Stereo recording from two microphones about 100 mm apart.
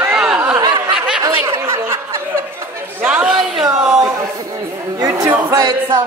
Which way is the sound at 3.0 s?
15° right (ahead or behind).